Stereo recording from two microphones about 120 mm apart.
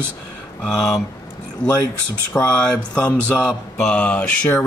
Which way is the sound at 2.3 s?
Centre (ahead or behind).